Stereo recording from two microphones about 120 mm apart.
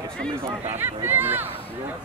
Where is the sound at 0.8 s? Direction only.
20° right (ahead or behind).